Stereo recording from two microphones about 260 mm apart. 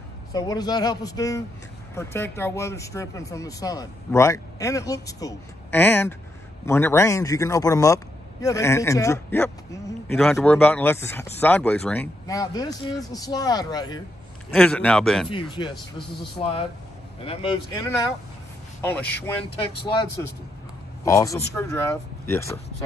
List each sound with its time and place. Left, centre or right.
0.3 s speech: centre
14.5 s speech: centre
15.6 s speech: centre
17.2 s speech: left
19.8 s speech: centre